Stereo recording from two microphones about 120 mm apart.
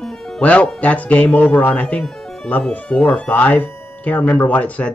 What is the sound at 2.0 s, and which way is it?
Music, 5° left (ahead or behind).